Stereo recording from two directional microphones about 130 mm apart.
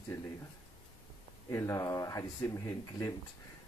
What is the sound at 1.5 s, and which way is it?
Speech, 25° left (ahead or behind).